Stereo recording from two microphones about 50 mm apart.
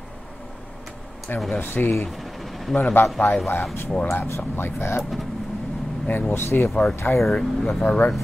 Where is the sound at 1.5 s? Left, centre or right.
Left.